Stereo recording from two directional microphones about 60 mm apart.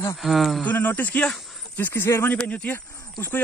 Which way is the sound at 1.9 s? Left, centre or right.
Left.